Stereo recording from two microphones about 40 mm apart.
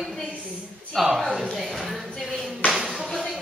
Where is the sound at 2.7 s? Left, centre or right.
Centre.